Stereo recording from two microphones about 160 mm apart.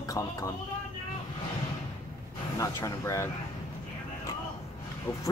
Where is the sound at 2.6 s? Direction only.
20° left (ahead or behind).